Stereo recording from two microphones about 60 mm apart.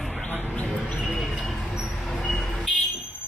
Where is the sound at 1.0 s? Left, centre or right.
Centre.